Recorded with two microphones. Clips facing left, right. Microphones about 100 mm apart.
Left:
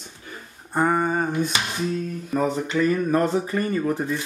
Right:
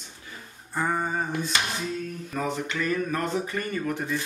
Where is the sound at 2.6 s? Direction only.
35° left (ahead or behind).